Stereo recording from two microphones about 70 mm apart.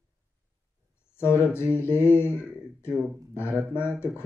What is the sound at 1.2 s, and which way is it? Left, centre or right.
A man's voice, left.